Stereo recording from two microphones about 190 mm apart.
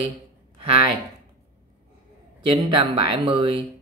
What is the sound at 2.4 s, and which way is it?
Speech, 25° right (ahead or behind).